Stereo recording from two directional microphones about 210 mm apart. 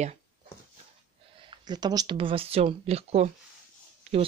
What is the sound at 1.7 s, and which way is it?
Speech, 20° right (ahead or behind).